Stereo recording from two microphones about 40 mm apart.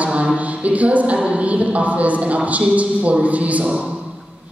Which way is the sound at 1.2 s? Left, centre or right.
Right.